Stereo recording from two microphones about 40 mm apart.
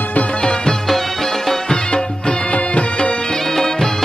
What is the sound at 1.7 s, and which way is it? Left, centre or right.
Music, centre.